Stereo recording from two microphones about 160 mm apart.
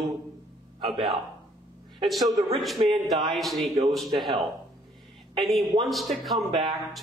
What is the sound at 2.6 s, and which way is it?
A man's voice, centre (ahead or behind).